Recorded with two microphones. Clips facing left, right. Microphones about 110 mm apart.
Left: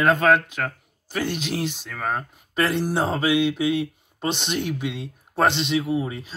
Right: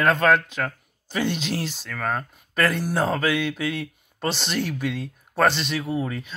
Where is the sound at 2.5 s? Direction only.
25° left (ahead or behind).